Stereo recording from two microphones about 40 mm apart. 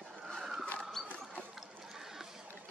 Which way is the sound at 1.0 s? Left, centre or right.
Right.